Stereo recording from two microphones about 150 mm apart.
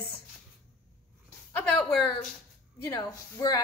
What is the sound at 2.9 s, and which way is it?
Speech, 25° left (ahead or behind).